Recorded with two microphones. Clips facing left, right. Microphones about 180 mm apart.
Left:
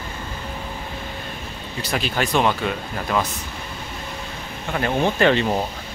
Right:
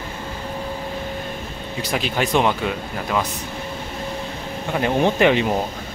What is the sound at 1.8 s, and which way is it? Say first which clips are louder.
Speech: right 1 dB; 15° right (ahead or behind).